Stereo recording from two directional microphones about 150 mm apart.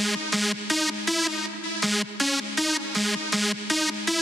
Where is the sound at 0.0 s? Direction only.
Centre (ahead or behind).